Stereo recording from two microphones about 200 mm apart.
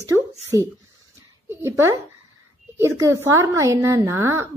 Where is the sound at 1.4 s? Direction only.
15° right (ahead or behind).